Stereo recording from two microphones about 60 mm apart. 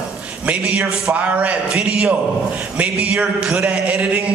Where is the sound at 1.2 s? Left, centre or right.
Right.